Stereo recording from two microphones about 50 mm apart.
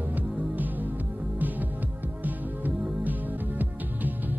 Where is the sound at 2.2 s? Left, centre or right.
Right.